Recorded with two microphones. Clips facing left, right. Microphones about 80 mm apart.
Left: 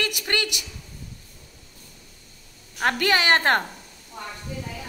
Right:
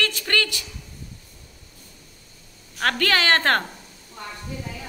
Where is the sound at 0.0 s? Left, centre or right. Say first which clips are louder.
Right 2 dB; centre.